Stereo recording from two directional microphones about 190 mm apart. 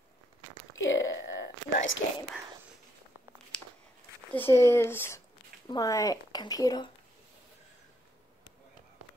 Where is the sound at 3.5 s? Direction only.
5° left (ahead or behind).